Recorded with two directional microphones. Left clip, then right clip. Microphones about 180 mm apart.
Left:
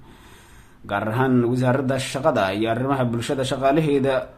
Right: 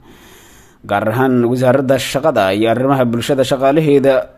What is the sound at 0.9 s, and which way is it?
A man's voice, 40° right (ahead or behind).